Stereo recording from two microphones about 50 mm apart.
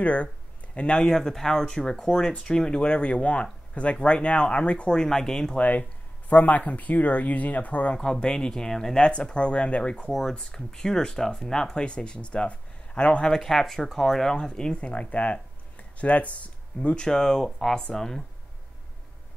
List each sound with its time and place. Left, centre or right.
0.0 s speech: left
5.6 s speech: left
7.9 s speech: centre
10.3 s speech: centre